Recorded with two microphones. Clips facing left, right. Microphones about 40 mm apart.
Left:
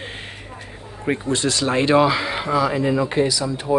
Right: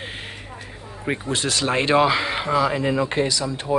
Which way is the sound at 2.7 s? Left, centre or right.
Right.